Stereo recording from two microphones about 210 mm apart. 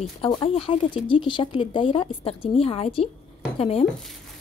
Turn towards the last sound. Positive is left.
turn(degrees=30)  # may be behind; listen again after turning